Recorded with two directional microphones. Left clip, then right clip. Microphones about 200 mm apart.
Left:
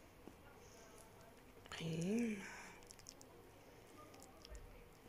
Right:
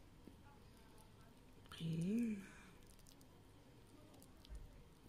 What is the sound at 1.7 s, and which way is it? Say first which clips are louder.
Speech: left 3 dB; 35° right (ahead or behind).